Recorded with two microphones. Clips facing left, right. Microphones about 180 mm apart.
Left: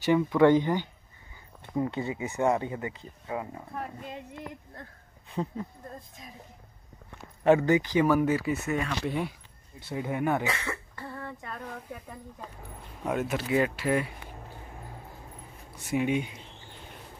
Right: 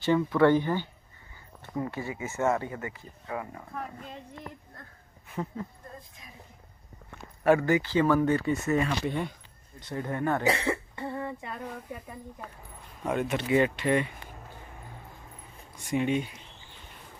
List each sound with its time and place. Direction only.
0.0 s speech: 15° left (ahead or behind)
5.3 s speech: 20° left (ahead or behind)
7.4 s speech: 20° left (ahead or behind)
10.4 s speech: 30° right (ahead or behind); by 12.2 s 5° right (ahead or behind)
13.0 s speech: 5° left (ahead or behind)
15.7 s speech: 5° left (ahead or behind)